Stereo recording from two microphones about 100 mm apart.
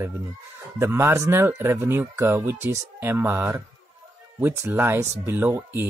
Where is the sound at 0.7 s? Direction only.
25° right (ahead or behind).